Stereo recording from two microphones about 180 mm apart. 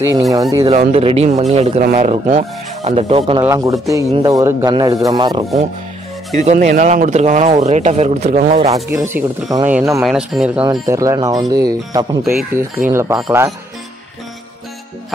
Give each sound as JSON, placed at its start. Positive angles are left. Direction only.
{"t": 0.3, "sound": "speech", "side_deg": -20}
{"t": 0.7, "sound": "speech", "side_deg": -35}
{"t": 3.4, "sound": "speech", "side_deg": -15}
{"t": 5.4, "sound": "speech", "side_deg": -35}
{"t": 8.9, "sound": "speech", "side_deg": -15}
{"t": 10.7, "sound": "speech", "side_deg": -20}